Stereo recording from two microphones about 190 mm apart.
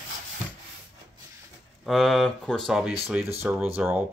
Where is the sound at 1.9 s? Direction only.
Centre (ahead or behind).